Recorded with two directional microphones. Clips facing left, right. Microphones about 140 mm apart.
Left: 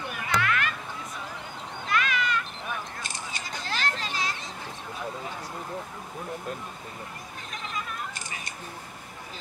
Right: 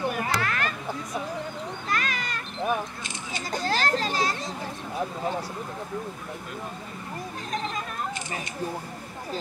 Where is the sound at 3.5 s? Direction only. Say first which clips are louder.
Right 7 dB; 40° right (ahead or behind).